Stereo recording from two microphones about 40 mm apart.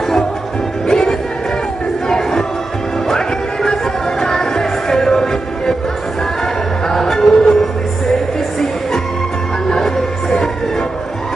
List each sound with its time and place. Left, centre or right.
0.8 s music: centre
9.7 s music: centre